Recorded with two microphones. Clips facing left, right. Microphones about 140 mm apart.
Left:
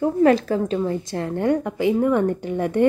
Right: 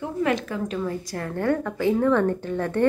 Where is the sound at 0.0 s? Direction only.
35° left (ahead or behind).